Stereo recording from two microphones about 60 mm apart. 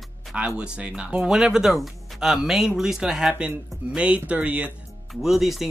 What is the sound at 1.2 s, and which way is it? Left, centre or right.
Speech, centre.